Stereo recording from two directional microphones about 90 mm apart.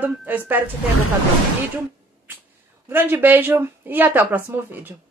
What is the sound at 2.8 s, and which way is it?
A woman's voice, 20° right (ahead or behind).